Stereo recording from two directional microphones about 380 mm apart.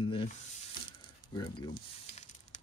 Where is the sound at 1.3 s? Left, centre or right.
Centre.